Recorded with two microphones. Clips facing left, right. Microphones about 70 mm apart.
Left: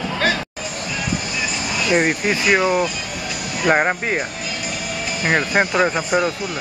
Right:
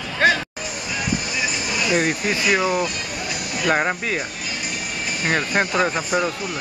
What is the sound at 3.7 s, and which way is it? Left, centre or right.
Speech, left.